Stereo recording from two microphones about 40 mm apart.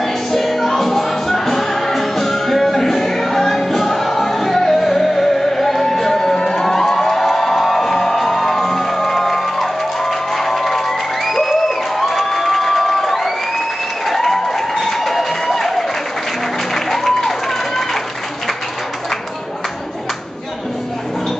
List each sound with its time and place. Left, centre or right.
0.0 s music: centre
12.0 s crowd: centre
14.0 s music: centre